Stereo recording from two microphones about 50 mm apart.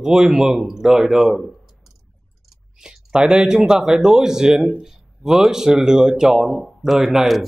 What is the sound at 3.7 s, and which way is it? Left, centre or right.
Speech, centre.